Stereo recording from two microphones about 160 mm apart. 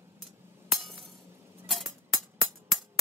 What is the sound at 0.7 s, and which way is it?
Chink, centre (ahead or behind).